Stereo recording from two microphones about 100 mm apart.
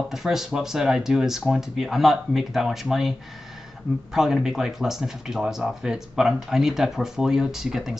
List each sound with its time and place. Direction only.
0.1 s speech: 5° right (ahead or behind)